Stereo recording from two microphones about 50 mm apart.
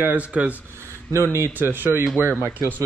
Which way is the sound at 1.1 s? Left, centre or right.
Right.